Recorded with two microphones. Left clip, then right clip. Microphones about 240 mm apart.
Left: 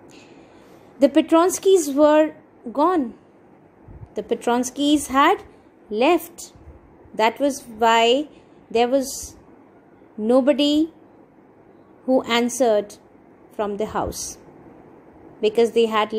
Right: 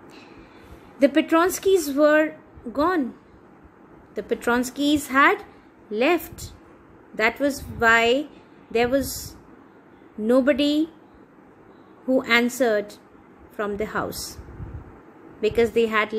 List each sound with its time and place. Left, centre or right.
0.9 s a woman's voice: centre
4.1 s a woman's voice: centre
10.2 s a woman's voice: centre
12.1 s a woman's voice: centre
14.1 s speech: right
15.4 s a woman's voice: centre